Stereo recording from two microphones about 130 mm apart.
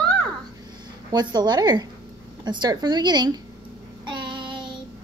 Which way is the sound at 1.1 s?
30° right (ahead or behind).